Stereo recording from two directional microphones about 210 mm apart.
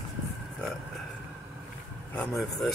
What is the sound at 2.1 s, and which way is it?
Speech, centre (ahead or behind).